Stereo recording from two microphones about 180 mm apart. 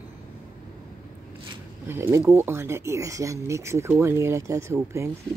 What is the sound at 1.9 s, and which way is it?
Speech, 15° right (ahead or behind).